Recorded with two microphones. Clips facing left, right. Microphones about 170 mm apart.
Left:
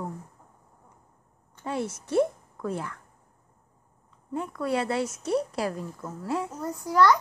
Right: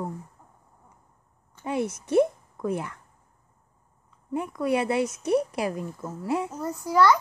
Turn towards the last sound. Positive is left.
turn(degrees=-5)  # may be behind; listen again after turning